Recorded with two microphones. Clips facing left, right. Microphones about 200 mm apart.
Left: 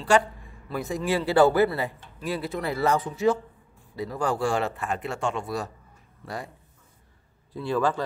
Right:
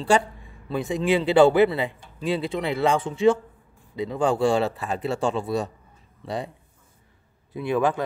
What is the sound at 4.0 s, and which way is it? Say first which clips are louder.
Speech: right 5 dB; 25° right (ahead or behind).